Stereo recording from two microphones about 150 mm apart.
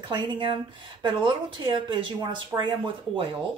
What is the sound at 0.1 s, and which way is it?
Speech, 35° right (ahead or behind).